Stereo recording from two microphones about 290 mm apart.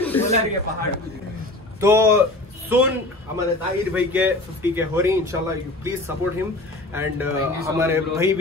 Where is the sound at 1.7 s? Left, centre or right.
Centre.